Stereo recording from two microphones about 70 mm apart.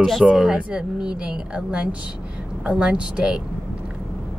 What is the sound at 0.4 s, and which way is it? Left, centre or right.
Speech, centre.